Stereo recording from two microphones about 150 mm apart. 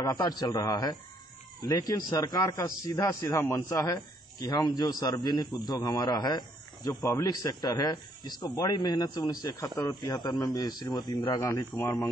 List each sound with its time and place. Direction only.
0.0 s a man's voice: 25° left (ahead or behind)
11.3 s speech: 15° left (ahead or behind)